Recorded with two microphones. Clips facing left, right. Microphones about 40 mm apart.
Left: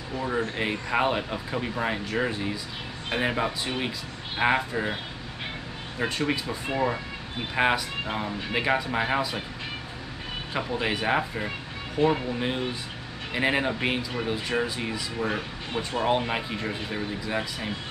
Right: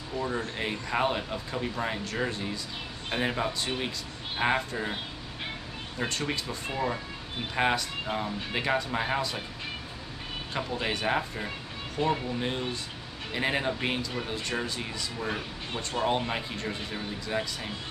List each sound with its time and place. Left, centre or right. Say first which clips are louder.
0.2 s speech: left 4 dB; centre
5.9 s speech: left 4 dB; centre
6.7 s speech: left 5 dB; left
10.5 s speech: left 3 dB; centre